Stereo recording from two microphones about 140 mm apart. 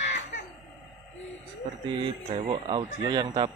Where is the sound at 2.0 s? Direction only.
40° right (ahead or behind).